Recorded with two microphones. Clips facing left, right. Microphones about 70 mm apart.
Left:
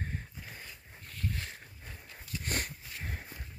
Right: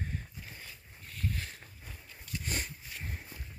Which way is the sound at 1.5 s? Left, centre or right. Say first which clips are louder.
Left 1 dB; left.